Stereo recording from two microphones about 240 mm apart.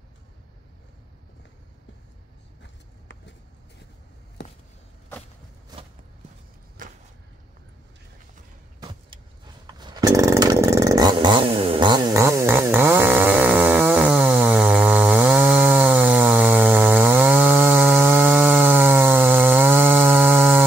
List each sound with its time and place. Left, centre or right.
6.8 s vehicle: right
8.7 s vehicle: centre
9.7 s chainsaw: centre